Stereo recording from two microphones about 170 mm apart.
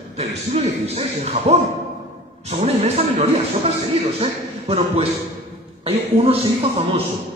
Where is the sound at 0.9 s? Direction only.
40° right (ahead or behind).